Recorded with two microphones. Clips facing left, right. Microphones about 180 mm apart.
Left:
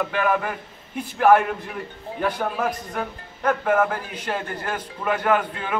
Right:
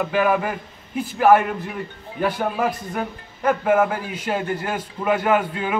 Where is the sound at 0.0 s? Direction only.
10° right (ahead or behind).